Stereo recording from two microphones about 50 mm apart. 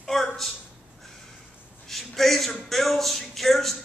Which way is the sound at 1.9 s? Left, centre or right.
Centre.